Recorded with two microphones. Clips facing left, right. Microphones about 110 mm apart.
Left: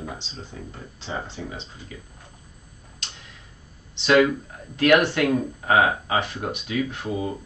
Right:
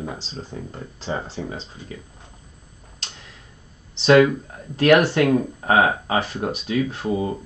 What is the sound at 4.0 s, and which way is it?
Speech, 35° right (ahead or behind).